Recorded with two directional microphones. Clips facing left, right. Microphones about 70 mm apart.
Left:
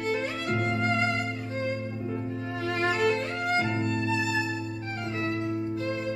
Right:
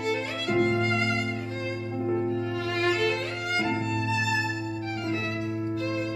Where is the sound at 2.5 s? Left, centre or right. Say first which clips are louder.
Left 3 dB; left.